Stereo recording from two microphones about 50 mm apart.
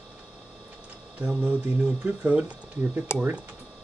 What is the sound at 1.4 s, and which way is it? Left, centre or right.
Mantra, right.